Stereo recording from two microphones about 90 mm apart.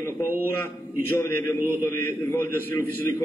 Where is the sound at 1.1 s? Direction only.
30° left (ahead or behind).